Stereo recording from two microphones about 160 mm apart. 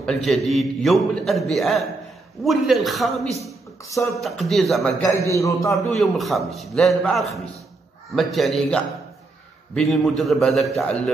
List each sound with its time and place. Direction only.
0.0 s a man's voice: 5° left (ahead or behind)
5.3 s a man's voice: 20° left (ahead or behind)
5.7 s a man's voice: centre (ahead or behind)